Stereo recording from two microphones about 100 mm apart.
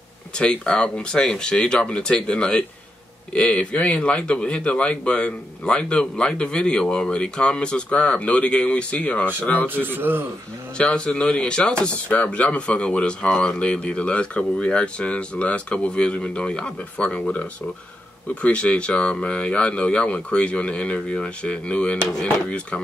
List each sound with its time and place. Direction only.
0.4 s speech: 10° left (ahead or behind)
9.8 s a man's voice: 20° right (ahead or behind)
10.8 s speech: 10° left (ahead or behind)